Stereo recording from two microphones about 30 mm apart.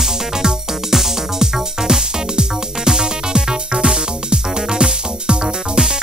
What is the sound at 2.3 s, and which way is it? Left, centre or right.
Music, right.